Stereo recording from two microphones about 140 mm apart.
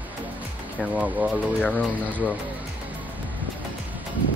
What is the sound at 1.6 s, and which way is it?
Speech, 10° left (ahead or behind).